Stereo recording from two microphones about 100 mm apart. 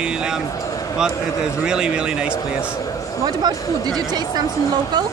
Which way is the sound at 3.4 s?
40° right (ahead or behind).